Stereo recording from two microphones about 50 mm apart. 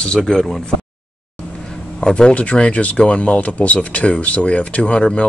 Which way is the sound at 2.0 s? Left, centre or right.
Centre.